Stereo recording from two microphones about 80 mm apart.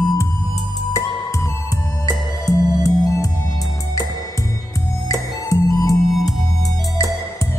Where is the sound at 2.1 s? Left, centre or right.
Left.